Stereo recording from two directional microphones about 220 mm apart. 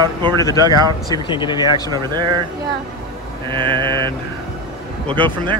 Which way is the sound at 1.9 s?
20° right (ahead or behind).